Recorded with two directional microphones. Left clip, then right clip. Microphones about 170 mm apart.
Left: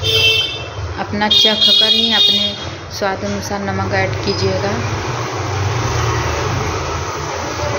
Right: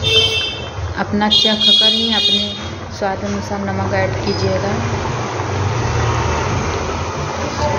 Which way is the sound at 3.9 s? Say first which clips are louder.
Even; 5° left (ahead or behind).